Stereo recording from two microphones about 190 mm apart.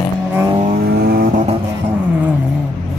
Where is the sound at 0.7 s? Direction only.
55° right (ahead or behind).